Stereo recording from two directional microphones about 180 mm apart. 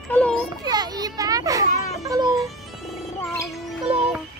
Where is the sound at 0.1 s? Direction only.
5° left (ahead or behind).